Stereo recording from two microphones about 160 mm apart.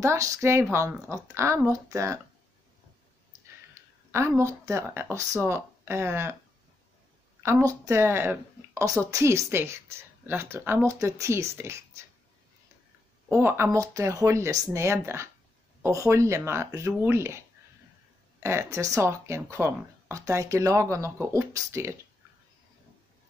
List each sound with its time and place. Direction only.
0.0 s a woman's voice: 20° right (ahead or behind)
4.4 s a woman's voice: 15° right (ahead or behind)
7.4 s a woman's voice: 20° right (ahead or behind)
13.3 s a woman's voice: 15° right (ahead or behind)
18.4 s a woman's voice: 15° right (ahead or behind)